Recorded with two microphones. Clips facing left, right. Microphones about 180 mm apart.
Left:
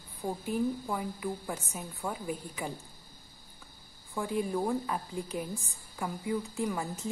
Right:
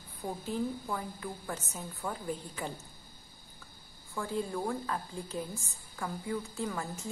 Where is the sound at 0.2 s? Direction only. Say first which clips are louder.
Left 3 dB; 10° left (ahead or behind).